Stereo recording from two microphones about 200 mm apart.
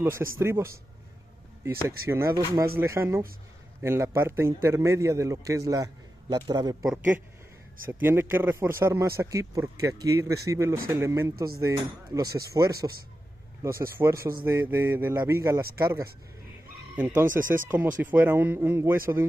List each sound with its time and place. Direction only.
0.0 s a man's voice: 10° right (ahead or behind)
1.9 s a man's voice: 15° right (ahead or behind)